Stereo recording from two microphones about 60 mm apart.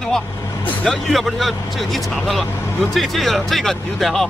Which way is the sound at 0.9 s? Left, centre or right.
Centre.